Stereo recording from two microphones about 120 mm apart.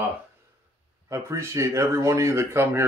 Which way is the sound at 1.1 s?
25° right (ahead or behind).